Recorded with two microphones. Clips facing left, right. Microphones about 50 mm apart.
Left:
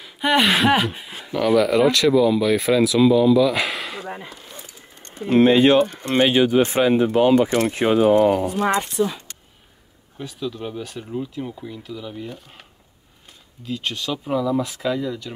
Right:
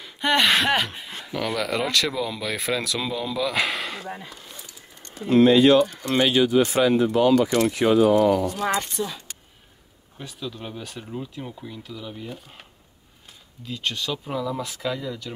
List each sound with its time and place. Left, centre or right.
0.0 s speech: centre
4.1 s speech: left
10.1 s speech: centre
13.7 s speech: centre